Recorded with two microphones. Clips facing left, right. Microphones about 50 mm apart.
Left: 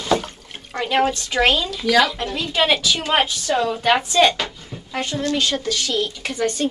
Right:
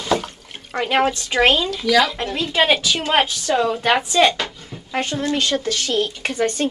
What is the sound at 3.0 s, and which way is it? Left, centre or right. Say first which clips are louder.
Speech: right 1 dB; centre.